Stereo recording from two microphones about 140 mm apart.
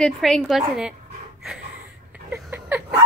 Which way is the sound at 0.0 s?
Centre (ahead or behind).